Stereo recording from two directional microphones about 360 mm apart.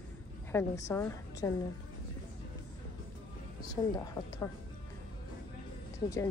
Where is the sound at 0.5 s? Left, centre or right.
Centre.